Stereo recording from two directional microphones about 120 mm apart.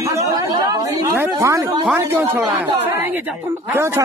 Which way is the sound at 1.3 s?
25° right (ahead or behind).